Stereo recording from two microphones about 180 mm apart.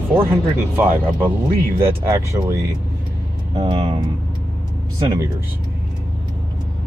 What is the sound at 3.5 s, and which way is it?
Speech, 25° right (ahead or behind).